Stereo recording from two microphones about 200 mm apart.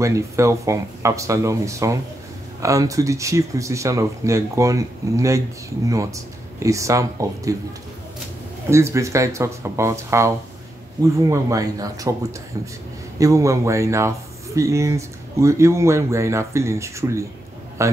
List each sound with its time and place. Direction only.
0.0 s speech: 15° right (ahead or behind)
8.6 s speech: 15° right (ahead or behind)